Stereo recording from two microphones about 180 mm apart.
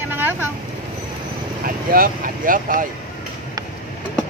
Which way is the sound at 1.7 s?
50° right (ahead or behind).